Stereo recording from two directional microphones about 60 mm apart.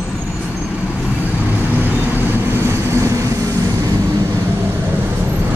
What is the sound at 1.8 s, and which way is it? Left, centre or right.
Vehicle, right.